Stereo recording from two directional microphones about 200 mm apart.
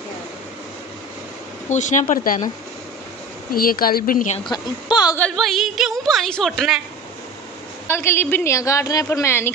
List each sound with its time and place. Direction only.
1.7 s speech: 35° left (ahead or behind)
3.5 s speech: 45° left (ahead or behind)
4.5 s a woman's voice: 20° left (ahead or behind)
5.1 s a woman's voice: 5° left (ahead or behind)
7.9 s a woman's voice: 10° left (ahead or behind)